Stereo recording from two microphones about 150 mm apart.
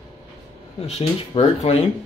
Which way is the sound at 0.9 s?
45° left (ahead or behind).